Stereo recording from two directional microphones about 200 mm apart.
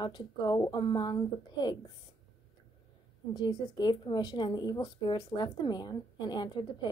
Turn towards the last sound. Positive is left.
turn(degrees=20)  # may be behind; listen again after turning